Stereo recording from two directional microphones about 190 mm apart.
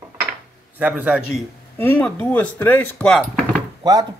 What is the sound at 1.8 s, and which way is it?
Speech, 10° left (ahead or behind).